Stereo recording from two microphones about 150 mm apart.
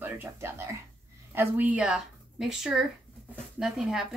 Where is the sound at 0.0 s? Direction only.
15° right (ahead or behind).